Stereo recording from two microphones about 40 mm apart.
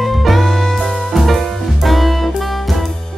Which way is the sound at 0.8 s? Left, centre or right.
Centre.